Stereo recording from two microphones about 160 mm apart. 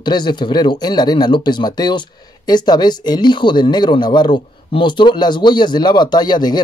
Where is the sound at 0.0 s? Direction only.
30° left (ahead or behind).